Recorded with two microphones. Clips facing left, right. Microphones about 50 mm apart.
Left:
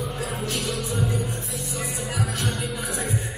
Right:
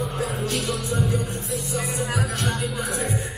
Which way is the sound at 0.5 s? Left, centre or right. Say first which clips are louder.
Right 2 dB; centre.